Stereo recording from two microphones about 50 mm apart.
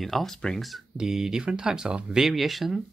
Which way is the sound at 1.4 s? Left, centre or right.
Centre.